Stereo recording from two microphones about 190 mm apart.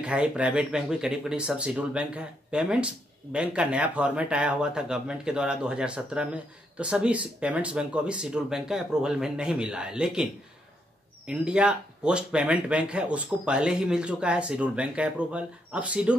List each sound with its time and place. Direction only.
0.0 s speech: 5° right (ahead or behind)
11.2 s speech: 5° right (ahead or behind)